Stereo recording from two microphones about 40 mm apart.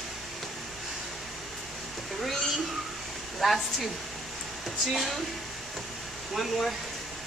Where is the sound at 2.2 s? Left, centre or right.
Centre.